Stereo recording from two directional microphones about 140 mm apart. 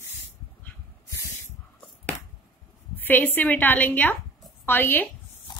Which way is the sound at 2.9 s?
15° left (ahead or behind).